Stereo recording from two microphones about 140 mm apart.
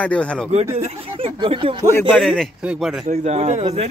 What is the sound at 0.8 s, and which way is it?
Speech, 45° right (ahead or behind).